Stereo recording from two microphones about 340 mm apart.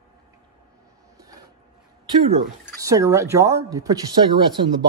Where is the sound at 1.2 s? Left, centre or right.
Centre.